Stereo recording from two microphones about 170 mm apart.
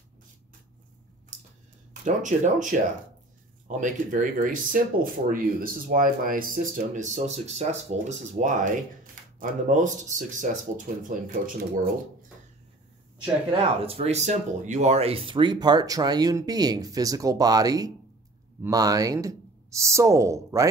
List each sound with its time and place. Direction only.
2.0 s speech: 50° right (ahead or behind)
13.8 s speech: 35° right (ahead or behind); by 20.6 s 15° right (ahead or behind)